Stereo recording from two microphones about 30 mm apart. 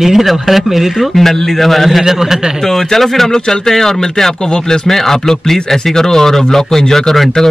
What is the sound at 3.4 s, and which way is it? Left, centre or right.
Speech, left.